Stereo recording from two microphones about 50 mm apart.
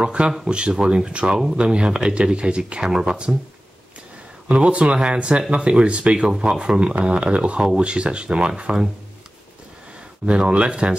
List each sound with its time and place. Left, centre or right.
0.0 s speech: centre
2.9 s speech: centre
4.5 s speech: right
10.2 s speech: right